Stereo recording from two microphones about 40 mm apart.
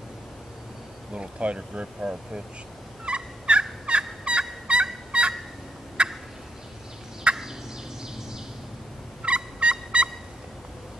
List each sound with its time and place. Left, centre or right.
1.1 s speech: right
3.1 s fowl: right
6.0 s turkey: right
7.3 s turkey: right
9.2 s fowl: right